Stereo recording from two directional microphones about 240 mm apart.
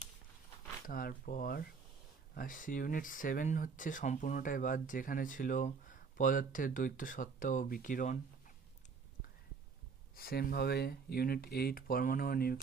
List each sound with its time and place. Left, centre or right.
0.8 s speech: left
10.1 s speech: left